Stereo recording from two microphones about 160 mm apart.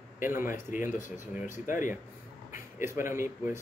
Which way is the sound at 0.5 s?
55° left (ahead or behind).